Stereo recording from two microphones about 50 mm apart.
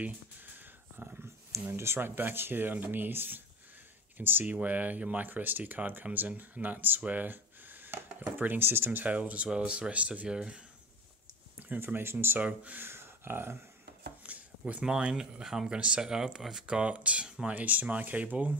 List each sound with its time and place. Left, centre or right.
0.6 s a sound: right
1.7 s speech: right
2.0 s speech: right
4.6 s speech: right
7.0 s a sound: right
8.4 s speech: right
9.1 s speech: right
11.8 s speech: right
12.4 s speech: right
12.7 s speech: right
14.2 s a sound: right
14.7 s speech: right